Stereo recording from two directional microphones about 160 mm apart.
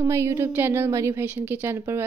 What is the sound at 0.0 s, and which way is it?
Speech, 15° right (ahead or behind).